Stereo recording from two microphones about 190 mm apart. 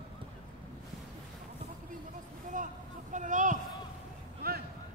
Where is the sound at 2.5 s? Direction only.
45° right (ahead or behind).